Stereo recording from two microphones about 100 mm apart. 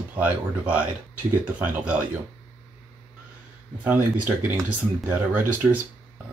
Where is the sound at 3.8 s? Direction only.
15° right (ahead or behind).